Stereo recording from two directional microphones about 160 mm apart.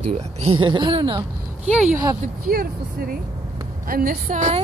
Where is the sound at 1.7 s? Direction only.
5° right (ahead or behind).